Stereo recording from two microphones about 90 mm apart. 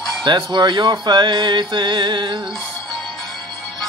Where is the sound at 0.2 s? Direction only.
50° right (ahead or behind).